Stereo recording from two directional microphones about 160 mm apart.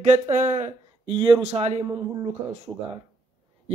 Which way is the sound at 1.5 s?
40° right (ahead or behind).